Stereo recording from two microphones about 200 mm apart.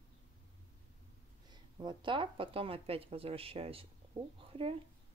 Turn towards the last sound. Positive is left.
turn(degrees=-30)  # may be behind; listen again after turning